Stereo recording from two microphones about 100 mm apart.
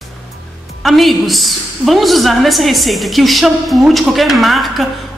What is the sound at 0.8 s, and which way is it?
A woman's voice, centre (ahead or behind).